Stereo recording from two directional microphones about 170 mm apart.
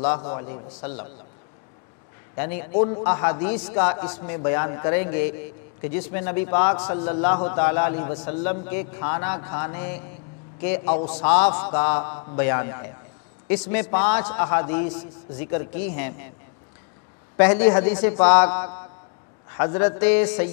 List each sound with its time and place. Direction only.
0.0 s a man's voice: 25° left (ahead or behind)
2.3 s a man's voice: 15° left (ahead or behind)
2.8 s a man's voice: 25° left (ahead or behind)
6.8 s a man's voice: 25° left (ahead or behind)
10.9 s a man's voice: 30° left (ahead or behind)
11.2 s a man's voice: 10° left (ahead or behind)
11.5 s a man's voice: 25° left (ahead or behind)
17.4 s a man's voice: 10° left (ahead or behind)
18.5 s a man's voice: 20° left (ahead or behind)